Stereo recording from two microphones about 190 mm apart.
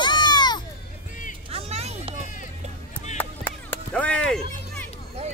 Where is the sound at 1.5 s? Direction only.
30° right (ahead or behind).